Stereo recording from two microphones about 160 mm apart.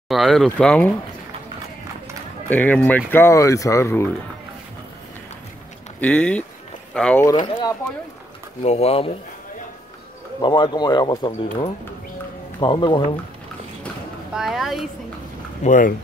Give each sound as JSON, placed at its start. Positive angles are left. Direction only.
{"t": 0.1, "sound": "speech", "side_deg": 0}
{"t": 2.5, "sound": "speech", "side_deg": 10}
{"t": 5.9, "sound": "speech", "side_deg": 10}
{"t": 7.4, "sound": "speech", "side_deg": 30}
{"t": 8.6, "sound": "speech", "side_deg": 40}
{"t": 10.4, "sound": "speech", "side_deg": 25}
{"t": 14.3, "sound": "speech", "side_deg": -5}
{"t": 15.6, "sound": "speech", "side_deg": 55}